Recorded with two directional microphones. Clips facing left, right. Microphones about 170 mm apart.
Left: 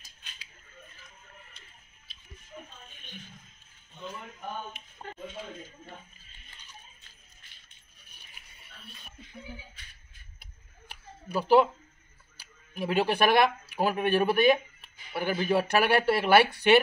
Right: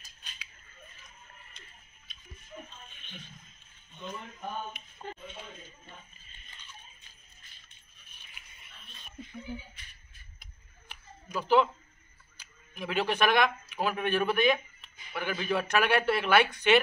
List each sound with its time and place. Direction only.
8.2 s music: 35° left (ahead or behind)
11.3 s speech: 35° left (ahead or behind)